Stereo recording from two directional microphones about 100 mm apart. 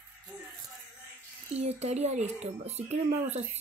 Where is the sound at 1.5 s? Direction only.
90° right.